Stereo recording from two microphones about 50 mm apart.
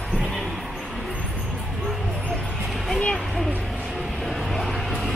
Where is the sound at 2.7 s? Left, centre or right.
Centre.